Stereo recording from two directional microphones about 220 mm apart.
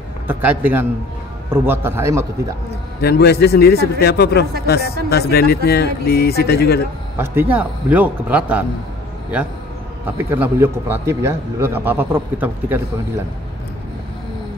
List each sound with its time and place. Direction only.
0.3 s a man's voice: 10° right (ahead or behind)
3.0 s a man's voice: 45° left (ahead or behind)
7.2 s a man's voice: 10° right (ahead or behind)
10.0 s a man's voice: 10° right (ahead or behind)